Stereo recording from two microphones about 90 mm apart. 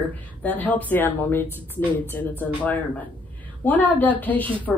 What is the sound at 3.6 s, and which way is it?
Speech, 20° left (ahead or behind).